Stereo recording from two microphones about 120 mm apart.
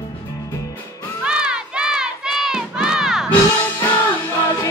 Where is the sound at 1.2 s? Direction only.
5° right (ahead or behind).